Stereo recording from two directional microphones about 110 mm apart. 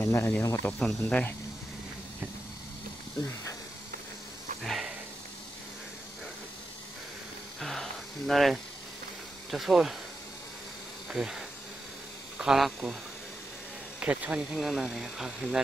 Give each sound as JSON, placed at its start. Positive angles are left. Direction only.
{"t": 0.0, "sound": "speech", "side_deg": 20}
{"t": 0.7, "sound": "speech", "side_deg": 10}
{"t": 4.6, "sound": "a sound", "side_deg": 0}
{"t": 7.6, "sound": "a sound", "side_deg": 0}
{"t": 9.5, "sound": "speech", "side_deg": 0}
{"t": 11.1, "sound": "bee", "side_deg": -5}
{"t": 12.4, "sound": "speech", "side_deg": -5}
{"t": 13.9, "sound": "speech", "side_deg": -10}